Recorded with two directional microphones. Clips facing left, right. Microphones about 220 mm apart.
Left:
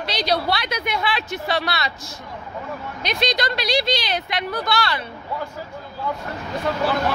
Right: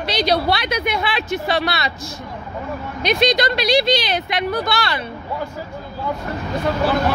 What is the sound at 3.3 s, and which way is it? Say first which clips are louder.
Speech: right 5 dB; 20° right (ahead or behind).